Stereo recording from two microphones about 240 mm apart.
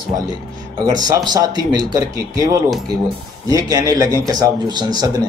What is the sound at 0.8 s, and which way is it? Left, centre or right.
Speech, centre.